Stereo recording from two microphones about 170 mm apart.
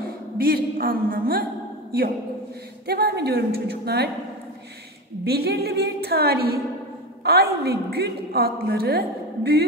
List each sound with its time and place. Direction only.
0.4 s a woman's voice: 60° right (ahead or behind)
2.9 s a woman's voice: 70° right (ahead or behind)
5.2 s a woman's voice: 70° right (ahead or behind)